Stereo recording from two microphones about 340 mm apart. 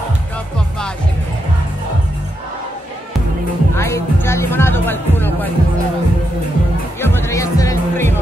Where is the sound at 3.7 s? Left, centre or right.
Centre.